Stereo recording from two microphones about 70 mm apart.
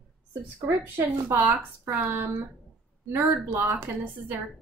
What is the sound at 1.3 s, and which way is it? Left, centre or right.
A woman's voice, right.